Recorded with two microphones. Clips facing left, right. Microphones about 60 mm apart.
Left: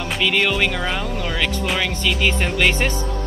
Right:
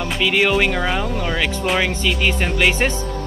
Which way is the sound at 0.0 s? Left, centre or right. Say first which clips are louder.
Right 2 dB; centre.